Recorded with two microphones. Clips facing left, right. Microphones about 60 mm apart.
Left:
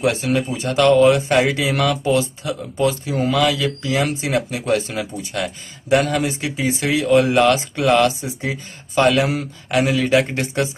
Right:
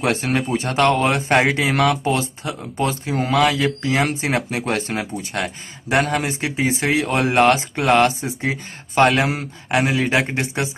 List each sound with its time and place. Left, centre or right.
0.0 s speech: right